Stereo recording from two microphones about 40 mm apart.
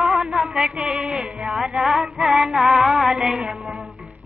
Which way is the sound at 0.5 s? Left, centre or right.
Right.